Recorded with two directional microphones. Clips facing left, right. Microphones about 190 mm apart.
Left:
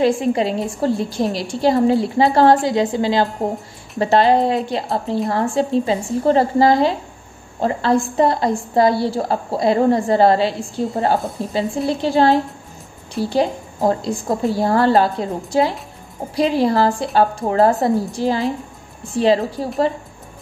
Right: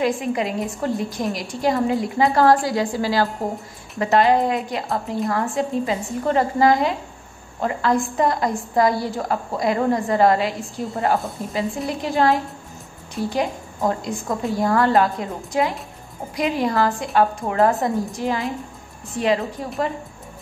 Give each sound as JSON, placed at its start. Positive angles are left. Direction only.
{"t": 0.0, "sound": "a woman's voice", "side_deg": 30}